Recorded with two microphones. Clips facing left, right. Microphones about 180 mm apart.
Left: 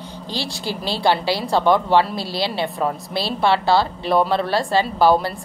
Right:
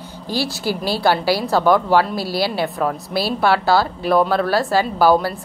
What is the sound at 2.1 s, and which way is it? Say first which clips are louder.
Speech: right 4 dB; 25° left (ahead or behind).